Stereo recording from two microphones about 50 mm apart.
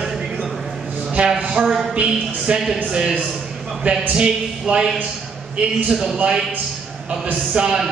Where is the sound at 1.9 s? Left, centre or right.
Right.